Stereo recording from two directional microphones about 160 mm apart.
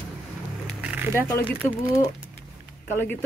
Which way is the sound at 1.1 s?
15° left (ahead or behind).